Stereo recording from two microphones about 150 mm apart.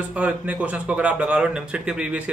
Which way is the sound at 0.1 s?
10° right (ahead or behind).